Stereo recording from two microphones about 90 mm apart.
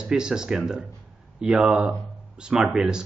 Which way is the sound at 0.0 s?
5° right (ahead or behind).